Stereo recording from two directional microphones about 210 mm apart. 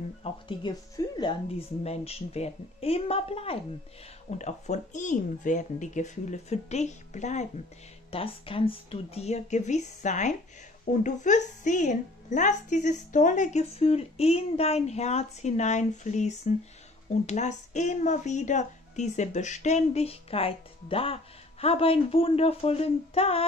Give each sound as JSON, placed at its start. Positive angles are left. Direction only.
{"t": 0.2, "sound": "a woman's voice", "side_deg": 25}